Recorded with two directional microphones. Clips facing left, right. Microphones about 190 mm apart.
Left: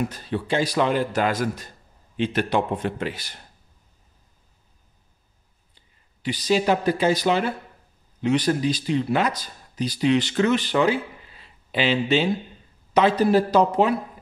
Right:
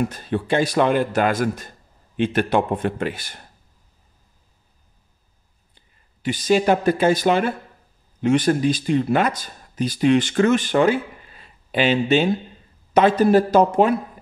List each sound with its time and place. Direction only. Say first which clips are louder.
0.1 s speech: right 3 dB; 50° right (ahead or behind)
6.2 s speech: right 3 dB; 50° right (ahead or behind)